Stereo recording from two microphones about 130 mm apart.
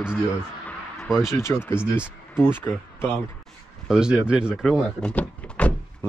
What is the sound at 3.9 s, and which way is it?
Speech, 5° right (ahead or behind).